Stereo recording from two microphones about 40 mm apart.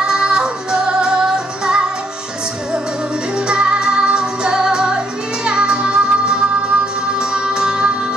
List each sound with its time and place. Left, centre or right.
0.0 s music: centre
3.3 s music: right